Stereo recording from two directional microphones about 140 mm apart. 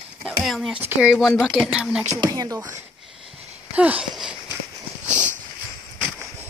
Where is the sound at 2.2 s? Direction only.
25° right (ahead or behind).